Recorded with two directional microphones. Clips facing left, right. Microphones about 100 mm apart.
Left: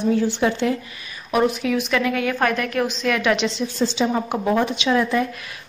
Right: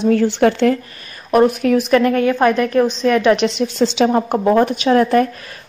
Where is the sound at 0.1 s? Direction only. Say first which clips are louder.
Right 7 dB; 60° right (ahead or behind); by 2.3 s 40° right (ahead or behind).